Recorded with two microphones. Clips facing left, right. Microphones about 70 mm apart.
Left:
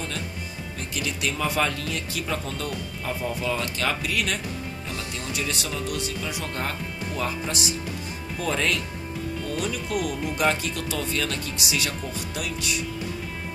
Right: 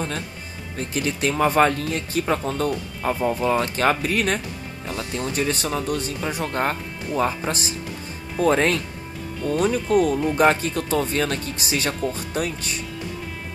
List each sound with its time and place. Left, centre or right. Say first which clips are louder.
0.7 s speech: right 6 dB; right